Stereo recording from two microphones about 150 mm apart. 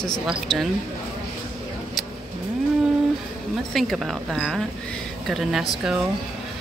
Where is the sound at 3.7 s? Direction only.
Centre (ahead or behind).